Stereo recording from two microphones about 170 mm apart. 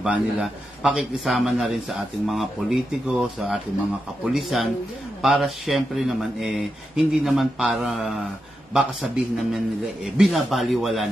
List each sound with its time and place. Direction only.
0.0 s speech: 5° right (ahead or behind)